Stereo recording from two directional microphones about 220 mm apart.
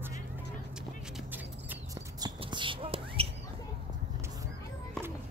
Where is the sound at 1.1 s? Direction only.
10° right (ahead or behind); by 3.3 s 25° right (ahead or behind).